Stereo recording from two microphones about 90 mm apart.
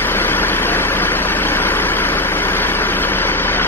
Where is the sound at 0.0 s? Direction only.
25° left (ahead or behind).